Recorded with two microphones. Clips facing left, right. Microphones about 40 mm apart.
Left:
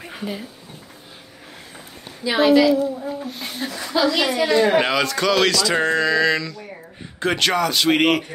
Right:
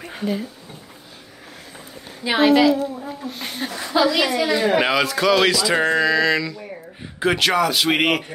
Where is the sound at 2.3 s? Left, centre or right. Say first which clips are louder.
Even; right.